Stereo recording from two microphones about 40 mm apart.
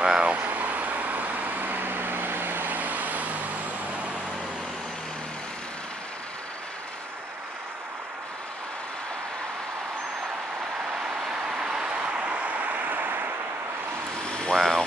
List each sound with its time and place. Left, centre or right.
0.0 s a sound: centre
0.3 s vehicle: right
11.1 s vehicle: centre
12.3 s vehicle: right
14.5 s vehicle: centre